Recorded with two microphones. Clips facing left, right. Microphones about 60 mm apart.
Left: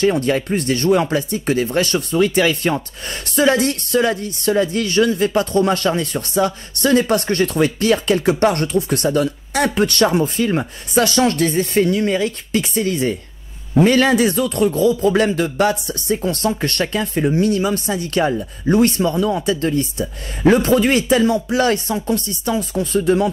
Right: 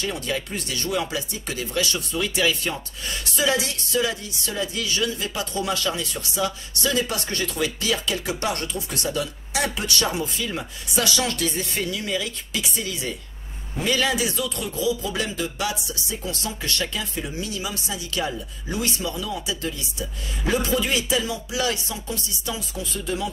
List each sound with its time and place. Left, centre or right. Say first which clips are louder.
0.0 s speech: left 11 dB; left